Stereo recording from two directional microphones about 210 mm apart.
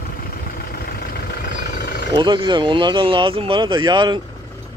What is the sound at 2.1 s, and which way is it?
Speech, 20° right (ahead or behind).